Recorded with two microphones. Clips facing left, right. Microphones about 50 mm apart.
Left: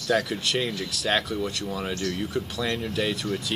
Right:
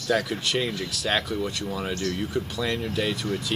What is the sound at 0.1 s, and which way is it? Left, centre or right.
Speech, centre.